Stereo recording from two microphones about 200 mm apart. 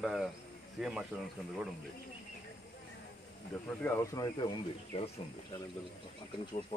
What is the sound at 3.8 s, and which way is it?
Speech, 15° left (ahead or behind).